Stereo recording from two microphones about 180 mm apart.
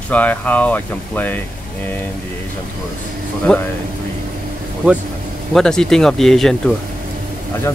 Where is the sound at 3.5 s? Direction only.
5° left (ahead or behind).